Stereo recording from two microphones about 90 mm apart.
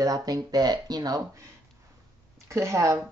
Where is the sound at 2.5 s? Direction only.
35° right (ahead or behind).